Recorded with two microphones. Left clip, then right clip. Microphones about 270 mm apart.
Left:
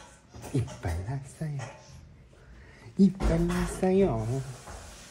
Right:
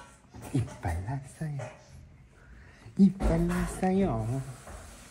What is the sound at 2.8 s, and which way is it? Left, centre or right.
Speech, centre.